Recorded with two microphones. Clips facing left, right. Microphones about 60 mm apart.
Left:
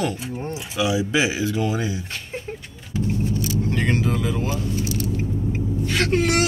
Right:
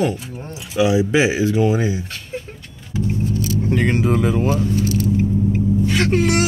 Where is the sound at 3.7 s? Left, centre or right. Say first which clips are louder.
Right 6 dB; centre.